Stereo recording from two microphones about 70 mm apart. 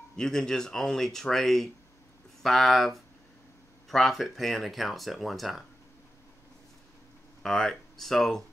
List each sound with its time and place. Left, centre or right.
0.1 s speech: centre
7.4 s speech: centre